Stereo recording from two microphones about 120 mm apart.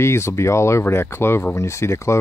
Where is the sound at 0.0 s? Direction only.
25° left (ahead or behind).